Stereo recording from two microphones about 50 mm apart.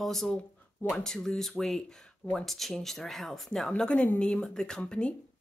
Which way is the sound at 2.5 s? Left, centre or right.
Centre.